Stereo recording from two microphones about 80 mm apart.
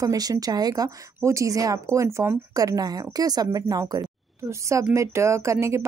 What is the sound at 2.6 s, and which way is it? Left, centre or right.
Speech, right.